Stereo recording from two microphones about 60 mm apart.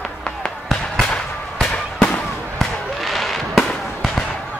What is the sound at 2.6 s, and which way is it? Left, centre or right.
Fireworks, centre.